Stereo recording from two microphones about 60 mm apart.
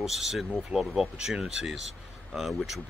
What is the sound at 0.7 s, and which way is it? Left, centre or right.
Speech, right.